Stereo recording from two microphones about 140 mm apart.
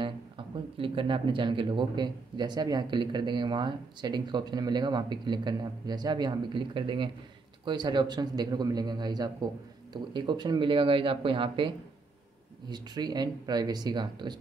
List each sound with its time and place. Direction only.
0.7 s speech: 40° right (ahead or behind)